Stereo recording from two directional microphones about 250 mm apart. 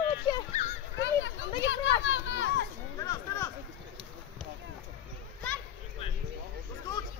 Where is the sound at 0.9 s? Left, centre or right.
Left.